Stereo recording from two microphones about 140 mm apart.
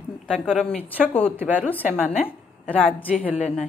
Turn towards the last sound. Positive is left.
turn(degrees=5)  # may be behind; listen again after turning